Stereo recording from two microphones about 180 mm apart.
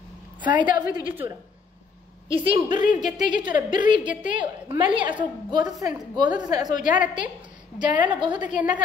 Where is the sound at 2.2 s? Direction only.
30° right (ahead or behind).